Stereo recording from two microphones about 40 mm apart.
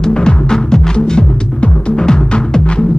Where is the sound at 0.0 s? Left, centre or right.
Centre.